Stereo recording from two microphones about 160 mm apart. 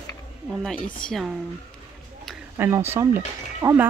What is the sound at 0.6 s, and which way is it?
Speech, 5° left (ahead or behind).